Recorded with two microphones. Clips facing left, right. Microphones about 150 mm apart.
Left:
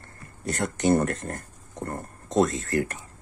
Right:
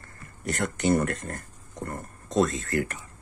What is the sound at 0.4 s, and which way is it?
Speech, 25° left (ahead or behind).